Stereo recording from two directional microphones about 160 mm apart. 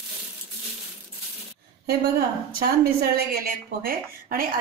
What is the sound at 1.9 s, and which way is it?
A woman's voice, 75° right (ahead or behind).